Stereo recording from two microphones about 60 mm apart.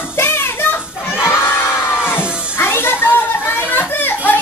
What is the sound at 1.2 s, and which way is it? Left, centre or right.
Crowd, left.